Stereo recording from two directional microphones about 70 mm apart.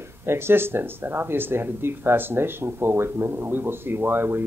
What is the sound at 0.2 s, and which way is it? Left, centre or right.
Speech, right.